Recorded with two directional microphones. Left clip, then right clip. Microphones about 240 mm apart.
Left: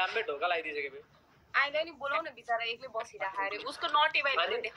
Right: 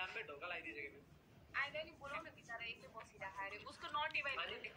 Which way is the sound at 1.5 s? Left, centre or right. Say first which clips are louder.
Left 14 dB; left.